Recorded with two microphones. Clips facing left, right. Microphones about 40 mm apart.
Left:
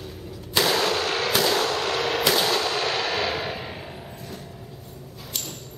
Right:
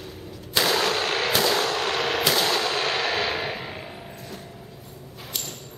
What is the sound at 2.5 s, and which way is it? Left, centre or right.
Clang, centre.